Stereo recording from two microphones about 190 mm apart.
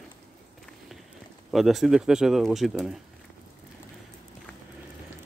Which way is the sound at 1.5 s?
Centre (ahead or behind).